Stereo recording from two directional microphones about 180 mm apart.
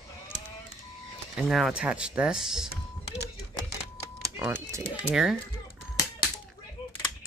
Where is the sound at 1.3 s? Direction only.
Centre (ahead or behind).